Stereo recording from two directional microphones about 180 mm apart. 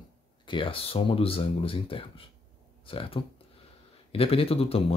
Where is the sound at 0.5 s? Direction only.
30° left (ahead or behind).